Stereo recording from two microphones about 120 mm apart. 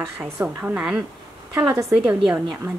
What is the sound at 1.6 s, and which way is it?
Speech, 25° right (ahead or behind).